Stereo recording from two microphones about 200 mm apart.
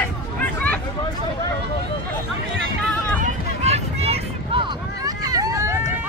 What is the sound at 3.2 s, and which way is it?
Vehicle, 35° right (ahead or behind).